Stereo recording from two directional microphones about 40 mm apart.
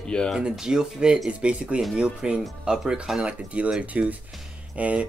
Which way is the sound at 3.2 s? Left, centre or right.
Right.